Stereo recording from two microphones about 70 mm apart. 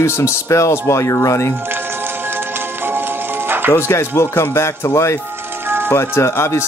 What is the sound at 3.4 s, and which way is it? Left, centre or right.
Music, right.